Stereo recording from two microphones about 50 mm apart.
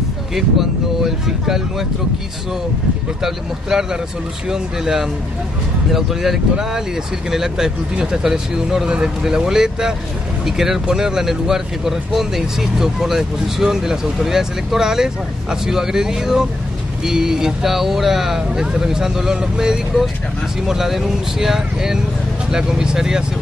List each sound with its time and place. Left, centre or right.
0.3 s speech: centre
3.2 s speech: centre
8.8 s speech: centre